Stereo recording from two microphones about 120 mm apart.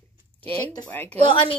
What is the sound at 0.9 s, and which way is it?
Speech, 15° left (ahead or behind).